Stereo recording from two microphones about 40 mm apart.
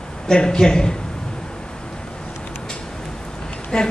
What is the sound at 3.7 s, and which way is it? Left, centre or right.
Speech, centre.